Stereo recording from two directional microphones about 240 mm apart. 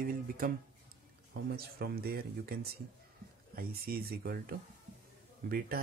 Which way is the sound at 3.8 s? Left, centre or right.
Right.